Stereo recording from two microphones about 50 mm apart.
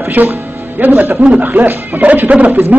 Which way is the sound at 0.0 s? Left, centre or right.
Right.